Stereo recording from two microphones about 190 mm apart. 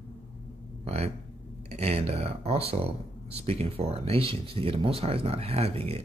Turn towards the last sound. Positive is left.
turn(degrees=-30)  # may be behind; listen again after turning